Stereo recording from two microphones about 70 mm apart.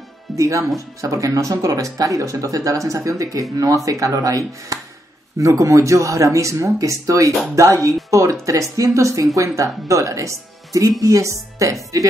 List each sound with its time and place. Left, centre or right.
0.4 s speech: right